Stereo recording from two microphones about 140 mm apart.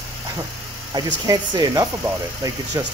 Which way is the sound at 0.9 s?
30° right (ahead or behind).